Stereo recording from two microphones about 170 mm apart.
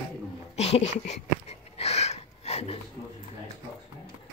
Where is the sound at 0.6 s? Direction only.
40° left (ahead or behind).